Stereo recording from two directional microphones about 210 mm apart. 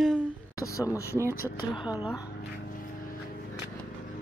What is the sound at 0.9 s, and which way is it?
Speech, 15° left (ahead or behind).